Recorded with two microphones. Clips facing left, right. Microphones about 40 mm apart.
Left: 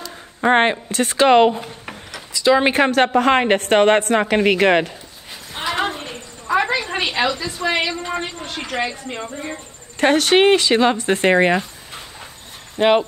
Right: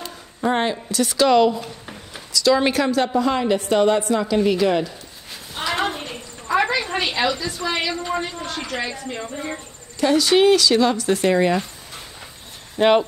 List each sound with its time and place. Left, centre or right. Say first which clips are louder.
0.4 s a woman's voice: left 5 dB; left
2.8 s a woman's voice: left 4 dB; left
6.0 s a sound: left 3 dB; centre
6.9 s a woman's voice: left 1 dB; centre
8.5 s a woman's voice: left 3 dB; left
9.0 s speech: left 1 dB; centre
9.9 s speech: left 2 dB; left
12.7 s speech: left 1 dB; centre